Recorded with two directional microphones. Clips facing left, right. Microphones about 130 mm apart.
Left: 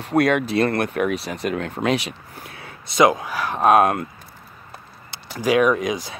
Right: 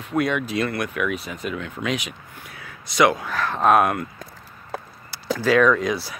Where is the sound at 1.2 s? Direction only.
75° left (ahead or behind).